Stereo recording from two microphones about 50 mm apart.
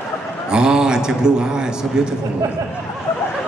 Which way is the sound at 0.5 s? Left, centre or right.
Centre.